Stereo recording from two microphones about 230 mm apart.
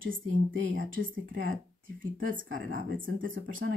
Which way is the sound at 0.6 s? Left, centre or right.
Right.